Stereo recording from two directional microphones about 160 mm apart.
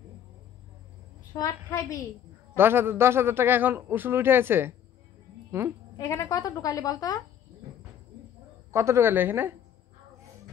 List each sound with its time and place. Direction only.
1.3 s a woman's voice: 20° left (ahead or behind)
2.5 s a man's voice: 15° right (ahead or behind)
5.9 s a woman's voice: 20° left (ahead or behind)
8.7 s a man's voice: 15° right (ahead or behind)